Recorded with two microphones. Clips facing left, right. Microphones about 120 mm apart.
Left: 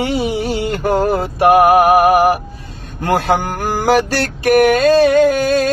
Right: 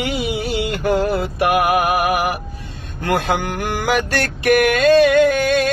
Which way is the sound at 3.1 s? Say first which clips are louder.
Left 4 dB; 40° left (ahead or behind).